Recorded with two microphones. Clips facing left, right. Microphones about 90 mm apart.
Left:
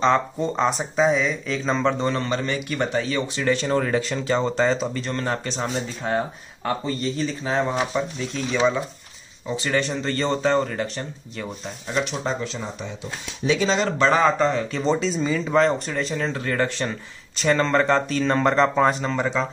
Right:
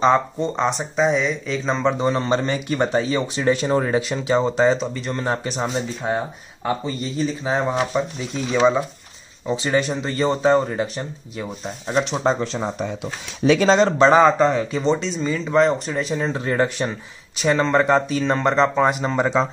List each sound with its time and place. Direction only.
0.4 s speech: centre (ahead or behind)
2.1 s speech: 25° right (ahead or behind); by 5.1 s centre (ahead or behind)
5.1 s speech: 15° right (ahead or behind)
11.6 s speech: 25° right (ahead or behind)
12.2 s speech: 40° right (ahead or behind)
13.7 s speech: 30° right (ahead or behind); by 14.9 s 10° right (ahead or behind)
14.9 s speech: centre (ahead or behind)
19.0 s speech: 20° right (ahead or behind)